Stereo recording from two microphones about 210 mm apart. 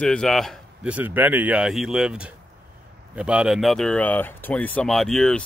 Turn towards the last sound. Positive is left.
turn(degrees=5)  # may be behind; listen again after turning